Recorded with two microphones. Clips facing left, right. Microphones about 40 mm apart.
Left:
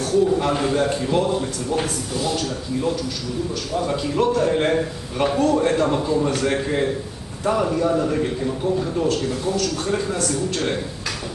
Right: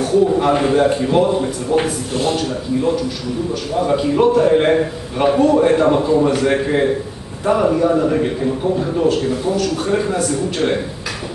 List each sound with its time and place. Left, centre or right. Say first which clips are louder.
0.0 s a man's voice: right 4 dB; centre